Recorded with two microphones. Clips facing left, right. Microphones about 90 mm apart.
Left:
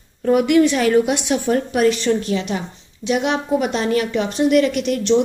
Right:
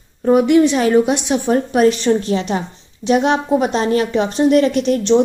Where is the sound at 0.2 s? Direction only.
25° right (ahead or behind).